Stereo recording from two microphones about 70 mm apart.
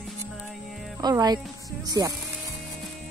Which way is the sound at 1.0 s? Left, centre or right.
Right.